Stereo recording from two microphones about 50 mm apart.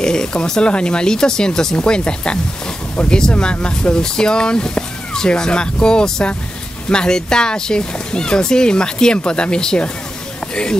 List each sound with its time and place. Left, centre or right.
0.0 s speech: centre